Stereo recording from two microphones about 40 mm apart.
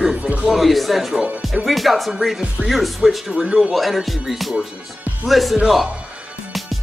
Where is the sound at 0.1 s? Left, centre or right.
Right.